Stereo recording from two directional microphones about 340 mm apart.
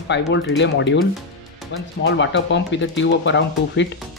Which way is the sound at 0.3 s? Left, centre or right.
Left.